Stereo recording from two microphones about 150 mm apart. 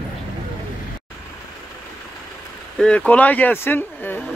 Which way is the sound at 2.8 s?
5° left (ahead or behind).